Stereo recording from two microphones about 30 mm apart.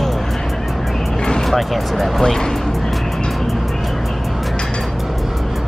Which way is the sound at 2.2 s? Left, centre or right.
Centre.